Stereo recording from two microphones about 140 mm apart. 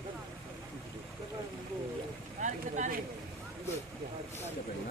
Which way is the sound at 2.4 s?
65° right (ahead or behind).